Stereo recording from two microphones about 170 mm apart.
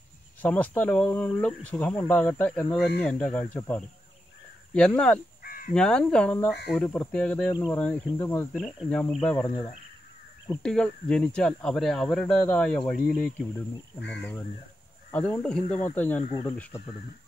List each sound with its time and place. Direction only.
0.4 s speech: 10° left (ahead or behind)
5.4 s caw: 55° left (ahead or behind)
5.8 s speech: 5° left (ahead or behind)